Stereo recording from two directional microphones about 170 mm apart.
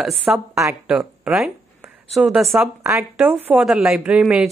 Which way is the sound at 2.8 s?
15° right (ahead or behind).